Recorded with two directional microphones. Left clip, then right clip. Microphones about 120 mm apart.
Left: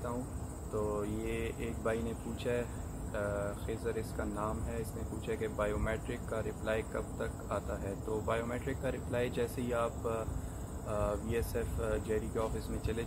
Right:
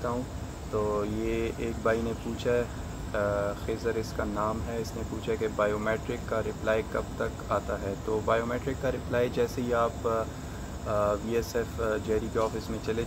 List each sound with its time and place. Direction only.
0.7 s speech: 20° right (ahead or behind)